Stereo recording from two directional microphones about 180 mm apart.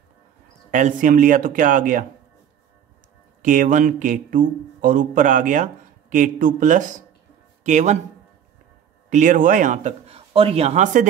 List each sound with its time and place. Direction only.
0.7 s speech: 45° right (ahead or behind)
3.4 s speech: 45° right (ahead or behind)
9.1 s speech: 45° right (ahead or behind)